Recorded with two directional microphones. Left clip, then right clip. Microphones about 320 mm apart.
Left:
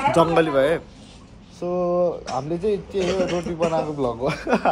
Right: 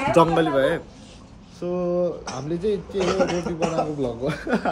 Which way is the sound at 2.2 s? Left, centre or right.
Centre.